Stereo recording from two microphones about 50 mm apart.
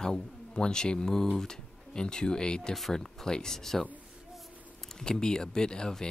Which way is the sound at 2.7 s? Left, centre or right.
Centre.